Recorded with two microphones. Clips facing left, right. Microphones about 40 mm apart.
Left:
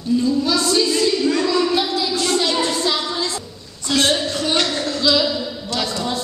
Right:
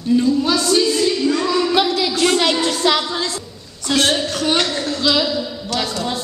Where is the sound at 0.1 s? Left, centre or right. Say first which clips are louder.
Right 2 dB; right.